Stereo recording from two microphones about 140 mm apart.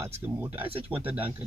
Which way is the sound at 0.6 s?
40° right (ahead or behind).